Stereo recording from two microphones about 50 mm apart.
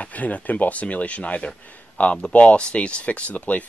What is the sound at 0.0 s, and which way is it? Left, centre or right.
Speech, left.